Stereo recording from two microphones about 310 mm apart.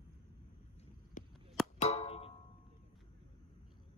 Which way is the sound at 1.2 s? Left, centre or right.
Left.